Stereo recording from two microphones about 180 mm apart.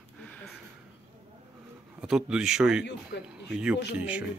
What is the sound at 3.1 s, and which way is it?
Speech, 70° left (ahead or behind).